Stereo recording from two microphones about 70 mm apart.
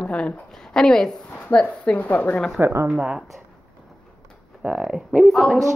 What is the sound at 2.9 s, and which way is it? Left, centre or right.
Speech, centre.